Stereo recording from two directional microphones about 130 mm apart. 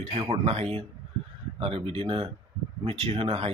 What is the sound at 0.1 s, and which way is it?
Speech, 50° right (ahead or behind).